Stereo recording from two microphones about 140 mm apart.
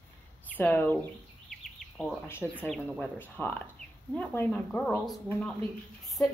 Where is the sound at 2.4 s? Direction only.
Centre (ahead or behind).